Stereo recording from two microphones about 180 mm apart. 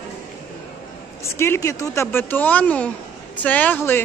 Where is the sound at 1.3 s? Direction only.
15° left (ahead or behind).